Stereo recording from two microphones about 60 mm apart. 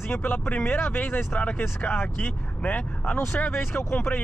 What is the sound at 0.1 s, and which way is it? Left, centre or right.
Speech, left.